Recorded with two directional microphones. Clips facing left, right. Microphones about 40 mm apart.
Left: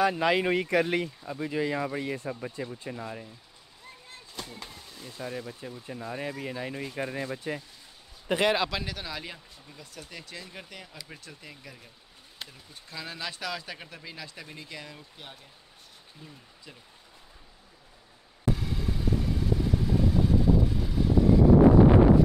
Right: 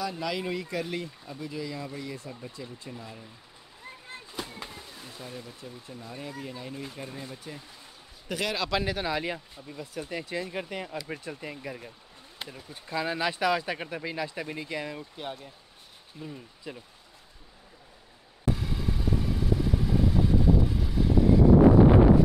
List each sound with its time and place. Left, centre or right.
0.2 s speech: left
1.0 s speech: left
1.4 s speech: left
4.1 s a sound: centre
5.2 s speech: centre
5.9 s speech: left
8.3 s speech: left
8.8 s speech: centre
16.2 s speech: centre
16.7 s speech: centre
18.5 s vehicle: centre